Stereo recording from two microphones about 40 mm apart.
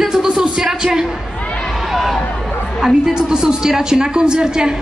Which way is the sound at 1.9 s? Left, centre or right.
Centre.